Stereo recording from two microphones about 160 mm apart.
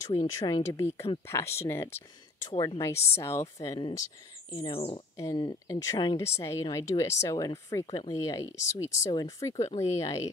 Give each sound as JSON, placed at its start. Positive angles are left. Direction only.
{"t": 0.1, "sound": "a woman's voice", "side_deg": 30}
{"t": 0.7, "sound": "speech", "side_deg": 15}
{"t": 2.5, "sound": "a woman's voice", "side_deg": 30}
{"t": 2.8, "sound": "a woman's voice", "side_deg": 15}
{"t": 4.6, "sound": "speech", "side_deg": 35}
{"t": 5.1, "sound": "a woman's voice", "side_deg": 20}
{"t": 7.8, "sound": "speech", "side_deg": 30}
{"t": 8.1, "sound": "a woman's voice", "side_deg": 20}
{"t": 9.6, "sound": "speech", "side_deg": 40}
{"t": 9.9, "sound": "a woman's voice", "side_deg": 20}